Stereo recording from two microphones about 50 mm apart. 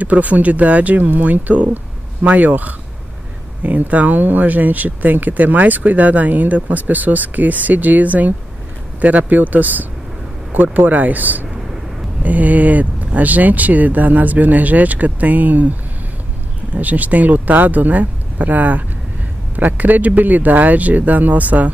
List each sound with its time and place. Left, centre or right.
0.0 s speech: right
16.7 s speech: right